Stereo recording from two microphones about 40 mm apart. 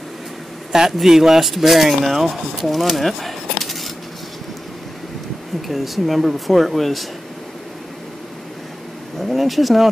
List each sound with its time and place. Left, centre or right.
0.7 s a man's voice: centre
5.7 s speech: centre
9.3 s speech: centre